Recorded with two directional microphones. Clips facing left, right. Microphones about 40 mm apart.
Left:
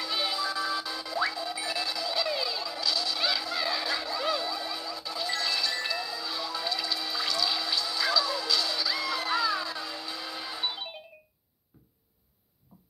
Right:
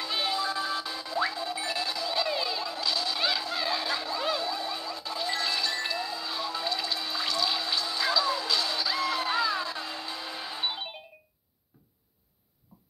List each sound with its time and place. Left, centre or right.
0.0 s music: right